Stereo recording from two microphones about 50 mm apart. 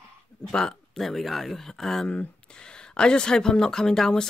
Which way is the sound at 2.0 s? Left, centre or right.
Centre.